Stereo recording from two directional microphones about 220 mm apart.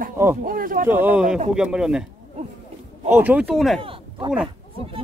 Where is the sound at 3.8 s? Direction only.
25° right (ahead or behind).